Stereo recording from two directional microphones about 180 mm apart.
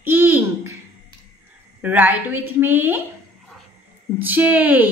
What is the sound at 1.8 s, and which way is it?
A woman's voice, 10° right (ahead or behind).